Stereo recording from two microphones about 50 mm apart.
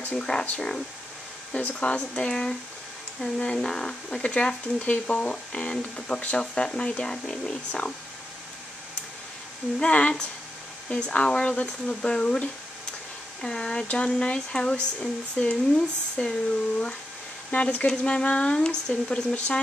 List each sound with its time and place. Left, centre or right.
0.2 s speech: centre
1.5 s speech: left
9.8 s speech: left
17.5 s speech: left